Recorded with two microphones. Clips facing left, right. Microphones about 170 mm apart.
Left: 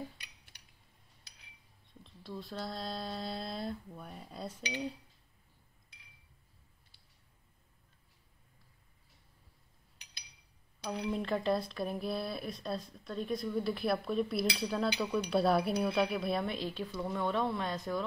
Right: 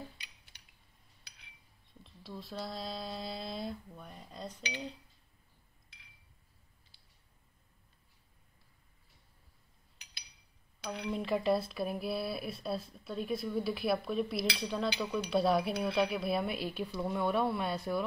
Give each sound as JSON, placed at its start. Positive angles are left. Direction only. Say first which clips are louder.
{"t": 2.0, "sound": "speech", "louder": "left 2 dB", "side_deg": 0}
{"t": 6.9, "sound": "a sound", "louder": "left 1 dB", "side_deg": 60}
{"t": 11.1, "sound": "speech", "louder": "right 2 dB", "side_deg": 0}